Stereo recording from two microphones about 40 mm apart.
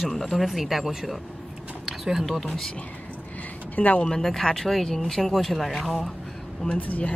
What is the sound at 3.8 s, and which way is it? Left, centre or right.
Speech, left.